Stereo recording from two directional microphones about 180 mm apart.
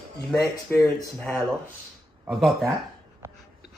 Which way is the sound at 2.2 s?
Centre (ahead or behind).